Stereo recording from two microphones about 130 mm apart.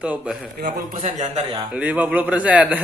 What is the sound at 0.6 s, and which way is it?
Speech, 90° right.